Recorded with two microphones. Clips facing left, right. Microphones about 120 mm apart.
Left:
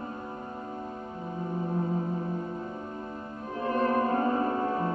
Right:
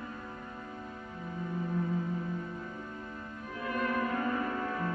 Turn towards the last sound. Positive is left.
turn(degrees=30)  # may be behind; listen again after turning